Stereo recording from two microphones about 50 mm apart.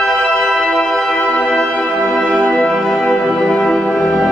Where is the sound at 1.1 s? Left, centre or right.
Left; by 4.3 s centre.